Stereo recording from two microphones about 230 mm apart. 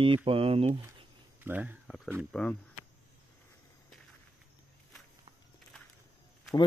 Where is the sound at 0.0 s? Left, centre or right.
Right.